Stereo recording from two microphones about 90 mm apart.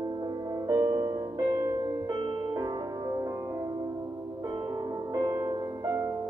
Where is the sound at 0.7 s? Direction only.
35° right (ahead or behind).